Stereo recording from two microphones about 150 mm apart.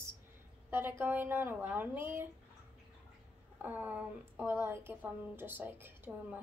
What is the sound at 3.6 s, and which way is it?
A woman's voice, 10° right (ahead or behind).